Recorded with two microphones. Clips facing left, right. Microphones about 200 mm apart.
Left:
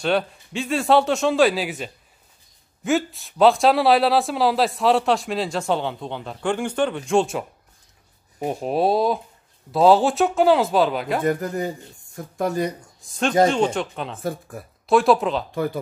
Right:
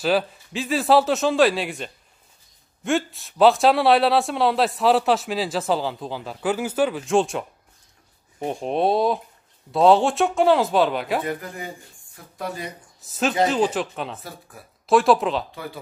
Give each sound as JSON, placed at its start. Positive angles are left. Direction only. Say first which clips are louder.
{"t": 0.0, "sound": "speech", "louder": "even", "side_deg": 0}
{"t": 8.5, "sound": "speech", "louder": "left 1 dB", "side_deg": 5}
{"t": 11.2, "sound": "speech", "louder": "left 7 dB", "side_deg": 45}
{"t": 13.5, "sound": "speech", "louder": "left 1 dB", "side_deg": -5}
{"t": 15.5, "sound": "speech", "louder": "left 10 dB", "side_deg": 45}